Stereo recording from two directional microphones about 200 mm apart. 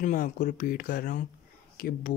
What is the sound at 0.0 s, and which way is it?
Speech, 40° left (ahead or behind).